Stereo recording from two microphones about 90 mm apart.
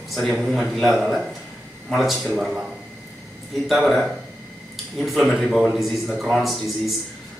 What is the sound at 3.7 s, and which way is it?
A man's voice, 5° right (ahead or behind).